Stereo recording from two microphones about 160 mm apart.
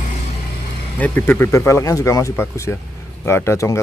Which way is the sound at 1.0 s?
15° left (ahead or behind).